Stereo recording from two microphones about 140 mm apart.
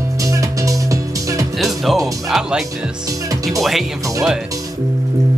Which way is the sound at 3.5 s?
Centre (ahead or behind).